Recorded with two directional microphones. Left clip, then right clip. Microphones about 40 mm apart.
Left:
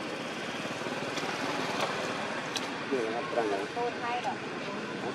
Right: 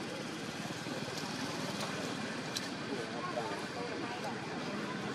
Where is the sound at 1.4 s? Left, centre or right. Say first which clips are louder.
Left 8 dB; left.